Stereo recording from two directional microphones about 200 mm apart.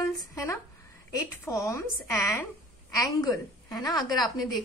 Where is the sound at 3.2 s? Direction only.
20° left (ahead or behind).